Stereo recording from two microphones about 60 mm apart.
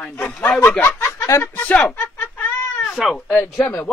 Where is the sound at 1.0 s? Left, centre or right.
Left.